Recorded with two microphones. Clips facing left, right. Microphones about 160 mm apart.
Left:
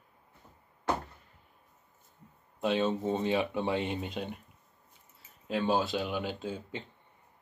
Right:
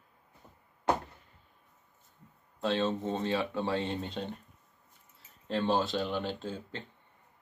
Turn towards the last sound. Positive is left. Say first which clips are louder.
# left 1 dB
turn(degrees=10)  # may be behind; listen again after turning